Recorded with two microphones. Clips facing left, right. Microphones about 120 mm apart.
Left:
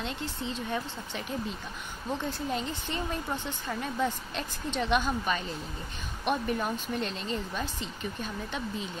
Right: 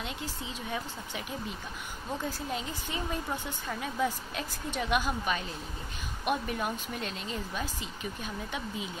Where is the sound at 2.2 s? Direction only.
5° right (ahead or behind).